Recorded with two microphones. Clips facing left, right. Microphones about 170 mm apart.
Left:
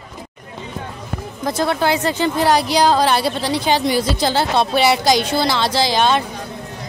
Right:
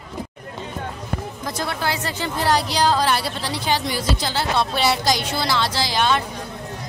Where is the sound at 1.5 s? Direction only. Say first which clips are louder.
Left 8 dB; 25° left (ahead or behind).